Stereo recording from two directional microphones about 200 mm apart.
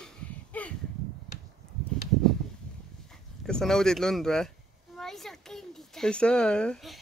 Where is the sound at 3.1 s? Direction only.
5° left (ahead or behind).